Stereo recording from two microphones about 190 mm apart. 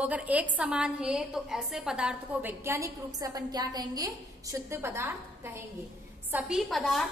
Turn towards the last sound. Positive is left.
turn(degrees=0)  # may be behind; listen again after turning